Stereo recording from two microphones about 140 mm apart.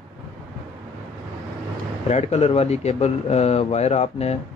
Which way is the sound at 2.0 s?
50° left (ahead or behind).